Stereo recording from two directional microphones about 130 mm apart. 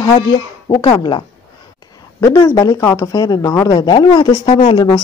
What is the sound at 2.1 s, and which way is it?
Speech, 25° left (ahead or behind).